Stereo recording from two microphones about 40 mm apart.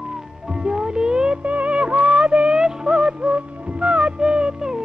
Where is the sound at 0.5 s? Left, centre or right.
Centre.